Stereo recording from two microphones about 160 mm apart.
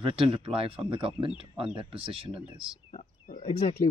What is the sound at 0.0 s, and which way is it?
Speech, 35° right (ahead or behind).